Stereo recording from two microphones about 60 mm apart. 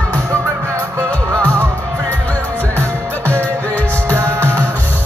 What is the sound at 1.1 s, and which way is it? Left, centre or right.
Music, left.